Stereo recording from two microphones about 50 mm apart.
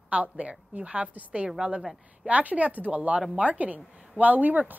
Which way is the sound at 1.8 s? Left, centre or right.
Centre.